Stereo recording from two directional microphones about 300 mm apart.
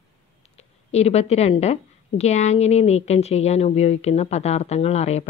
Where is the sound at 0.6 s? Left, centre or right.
Left.